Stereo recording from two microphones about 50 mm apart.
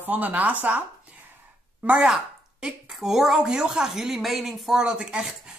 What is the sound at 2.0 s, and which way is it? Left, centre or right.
Speech, centre.